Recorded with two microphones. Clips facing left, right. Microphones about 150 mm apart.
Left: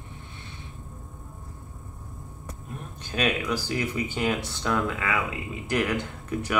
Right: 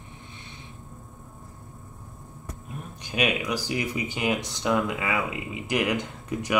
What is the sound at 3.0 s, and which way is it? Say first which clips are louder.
Speech: even; 15° right (ahead or behind).